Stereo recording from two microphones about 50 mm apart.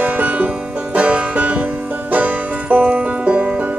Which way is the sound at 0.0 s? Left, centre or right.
Right.